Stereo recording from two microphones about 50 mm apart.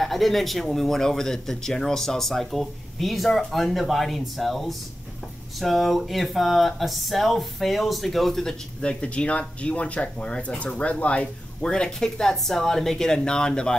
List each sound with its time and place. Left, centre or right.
0.0 s speech: centre
8.8 s speech: left